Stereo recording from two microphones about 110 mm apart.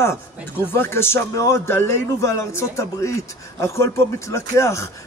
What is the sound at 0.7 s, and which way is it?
A man's voice, 20° left (ahead or behind).